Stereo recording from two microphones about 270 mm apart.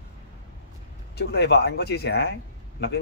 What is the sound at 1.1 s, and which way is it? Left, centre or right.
Speech, left.